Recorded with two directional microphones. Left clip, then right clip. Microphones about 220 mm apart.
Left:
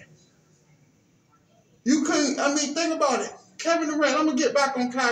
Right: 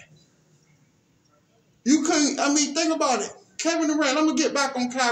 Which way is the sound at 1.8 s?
45° right (ahead or behind).